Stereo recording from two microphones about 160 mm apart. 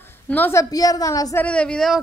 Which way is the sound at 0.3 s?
15° left (ahead or behind).